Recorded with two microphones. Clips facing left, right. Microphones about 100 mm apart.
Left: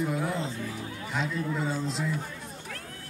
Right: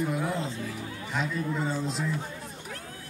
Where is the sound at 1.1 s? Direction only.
Centre (ahead or behind).